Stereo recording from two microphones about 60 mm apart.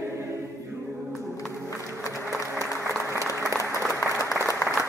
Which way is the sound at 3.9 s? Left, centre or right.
Left.